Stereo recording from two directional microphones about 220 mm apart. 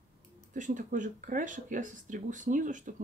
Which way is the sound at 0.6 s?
35° right (ahead or behind).